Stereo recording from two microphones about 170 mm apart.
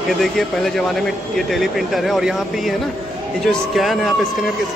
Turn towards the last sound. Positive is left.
turn(degrees=0)  # may be behind; listen again after turning